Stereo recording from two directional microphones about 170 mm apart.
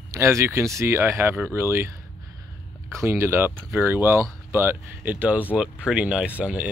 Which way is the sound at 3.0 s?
15° right (ahead or behind).